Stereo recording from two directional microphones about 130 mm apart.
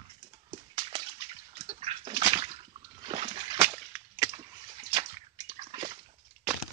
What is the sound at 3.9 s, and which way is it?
Whip, 25° right (ahead or behind).